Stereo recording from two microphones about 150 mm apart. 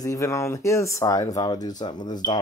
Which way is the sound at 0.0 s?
20° left (ahead or behind).